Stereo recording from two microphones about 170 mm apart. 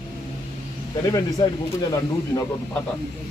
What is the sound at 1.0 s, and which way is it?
Speech, 20° left (ahead or behind).